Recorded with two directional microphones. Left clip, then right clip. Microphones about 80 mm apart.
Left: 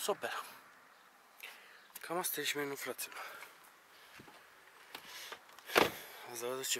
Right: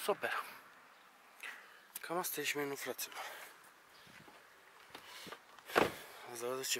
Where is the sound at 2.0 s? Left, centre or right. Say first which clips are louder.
Left 1 dB; centre.